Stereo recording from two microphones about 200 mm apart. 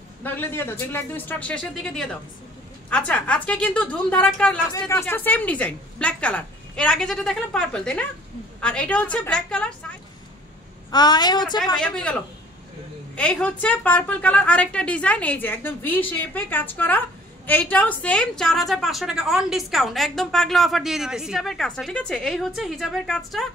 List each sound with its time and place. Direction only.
0.2 s a woman's voice: 10° left (ahead or behind)
10.9 s a woman's voice: 20° left (ahead or behind)
11.7 s a woman's voice: 5° left (ahead or behind)